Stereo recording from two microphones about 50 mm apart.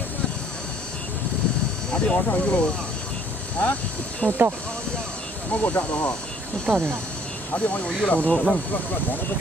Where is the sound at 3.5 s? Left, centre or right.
Left.